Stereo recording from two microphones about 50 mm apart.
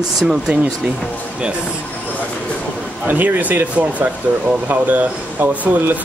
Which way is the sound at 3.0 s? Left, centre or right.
Right.